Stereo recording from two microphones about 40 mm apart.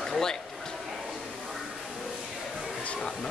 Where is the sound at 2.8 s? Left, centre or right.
Left.